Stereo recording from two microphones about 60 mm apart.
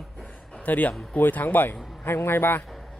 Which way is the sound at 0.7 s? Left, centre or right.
Left.